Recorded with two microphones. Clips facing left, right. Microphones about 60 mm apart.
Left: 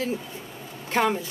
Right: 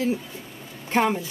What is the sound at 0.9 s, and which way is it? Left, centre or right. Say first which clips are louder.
Speech: right 1 dB; centre.